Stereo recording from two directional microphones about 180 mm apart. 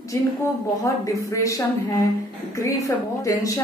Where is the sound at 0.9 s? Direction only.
20° left (ahead or behind).